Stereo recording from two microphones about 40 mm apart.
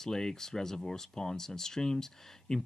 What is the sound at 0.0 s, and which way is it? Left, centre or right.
Speech, centre.